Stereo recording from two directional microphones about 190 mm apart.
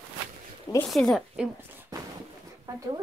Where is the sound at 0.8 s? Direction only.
Centre (ahead or behind).